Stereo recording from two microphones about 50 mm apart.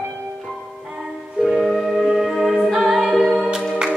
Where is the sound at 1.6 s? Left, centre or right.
Centre.